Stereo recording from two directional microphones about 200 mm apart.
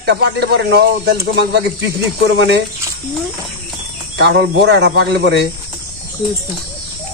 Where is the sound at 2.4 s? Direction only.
60° right (ahead or behind).